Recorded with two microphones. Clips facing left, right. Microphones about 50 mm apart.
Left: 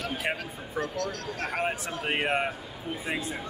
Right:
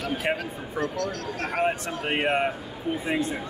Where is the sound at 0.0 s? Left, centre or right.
Centre.